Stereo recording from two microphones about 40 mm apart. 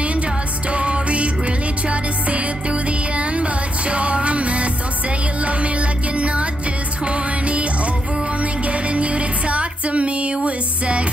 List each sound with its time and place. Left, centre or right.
0.7 s music: right